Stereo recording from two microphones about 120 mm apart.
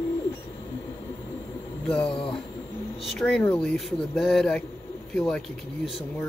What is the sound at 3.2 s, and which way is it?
Speech, 15° left (ahead or behind).